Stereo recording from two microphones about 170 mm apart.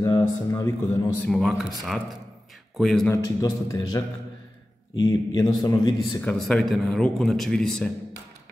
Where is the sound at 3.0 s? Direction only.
20° left (ahead or behind).